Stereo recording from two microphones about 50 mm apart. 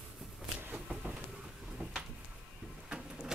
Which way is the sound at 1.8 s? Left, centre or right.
Right.